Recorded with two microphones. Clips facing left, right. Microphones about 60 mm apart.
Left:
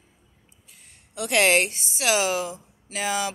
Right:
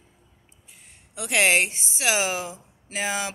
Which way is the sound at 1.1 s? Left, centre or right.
Centre.